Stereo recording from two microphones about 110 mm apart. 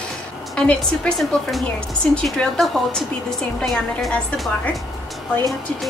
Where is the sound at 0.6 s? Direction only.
10° left (ahead or behind).